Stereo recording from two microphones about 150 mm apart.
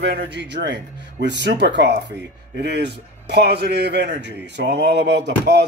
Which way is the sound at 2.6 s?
90° right.